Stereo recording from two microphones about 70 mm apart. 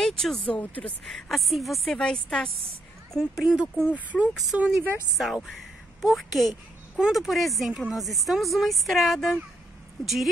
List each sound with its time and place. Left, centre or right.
0.0 s speech: centre
0.5 s speech: left
1.0 s speech: centre
2.0 s speech: centre
3.3 s speech: centre
3.8 s speech: centre
5.1 s a woman's voice: centre